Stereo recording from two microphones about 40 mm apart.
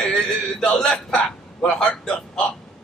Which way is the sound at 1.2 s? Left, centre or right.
Centre.